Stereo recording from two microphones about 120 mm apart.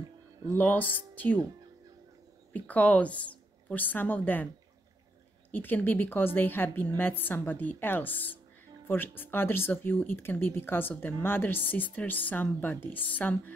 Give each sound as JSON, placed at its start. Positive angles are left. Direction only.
{"t": 0.6, "sound": "speech", "side_deg": 15}
{"t": 2.5, "sound": "a woman's voice", "side_deg": 10}
{"t": 5.5, "sound": "speech", "side_deg": 15}